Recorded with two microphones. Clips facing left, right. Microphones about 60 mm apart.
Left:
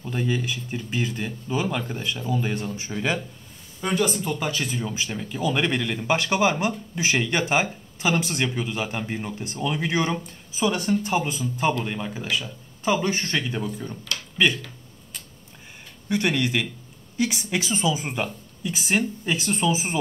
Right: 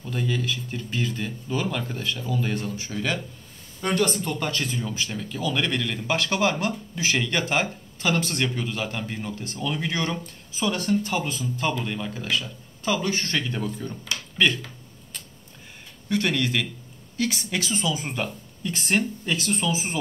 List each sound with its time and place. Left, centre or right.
0.0 s speech: centre
3.8 s speech: centre
16.1 s speech: centre
19.3 s speech: centre